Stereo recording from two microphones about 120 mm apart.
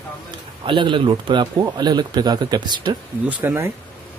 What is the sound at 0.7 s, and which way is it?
Speech, 45° right (ahead or behind).